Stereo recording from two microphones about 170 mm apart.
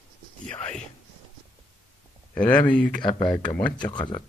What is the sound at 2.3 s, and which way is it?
Speech, 10° left (ahead or behind).